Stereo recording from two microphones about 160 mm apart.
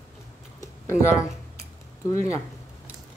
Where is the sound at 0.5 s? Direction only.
15° left (ahead or behind).